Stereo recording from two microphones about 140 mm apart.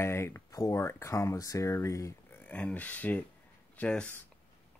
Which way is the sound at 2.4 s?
10° left (ahead or behind).